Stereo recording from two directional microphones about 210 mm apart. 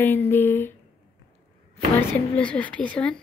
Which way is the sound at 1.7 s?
5° left (ahead or behind).